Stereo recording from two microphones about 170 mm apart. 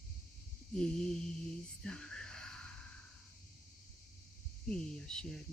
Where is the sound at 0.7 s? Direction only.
5° left (ahead or behind).